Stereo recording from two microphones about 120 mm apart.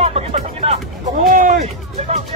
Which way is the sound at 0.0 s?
60° right (ahead or behind).